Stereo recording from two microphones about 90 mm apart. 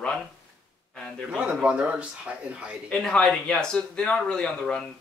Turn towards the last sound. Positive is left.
turn(degrees=10)  # may be behind; listen again after turning